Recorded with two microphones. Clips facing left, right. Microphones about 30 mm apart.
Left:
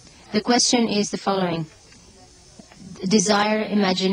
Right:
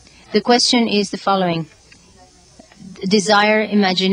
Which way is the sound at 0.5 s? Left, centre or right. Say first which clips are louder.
Right 4 dB; right.